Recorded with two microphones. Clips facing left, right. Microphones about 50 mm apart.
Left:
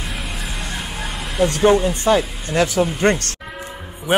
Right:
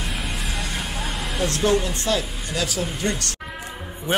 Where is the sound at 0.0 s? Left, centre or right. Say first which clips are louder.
Left 1 dB; centre.